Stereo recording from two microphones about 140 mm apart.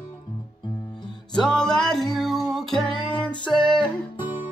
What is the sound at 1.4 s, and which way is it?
Music, 5° left (ahead or behind).